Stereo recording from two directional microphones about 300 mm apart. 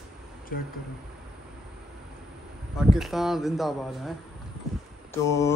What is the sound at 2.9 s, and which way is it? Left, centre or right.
Speech, centre.